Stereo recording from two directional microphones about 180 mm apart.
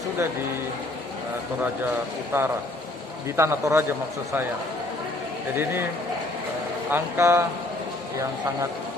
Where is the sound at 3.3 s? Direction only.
15° right (ahead or behind).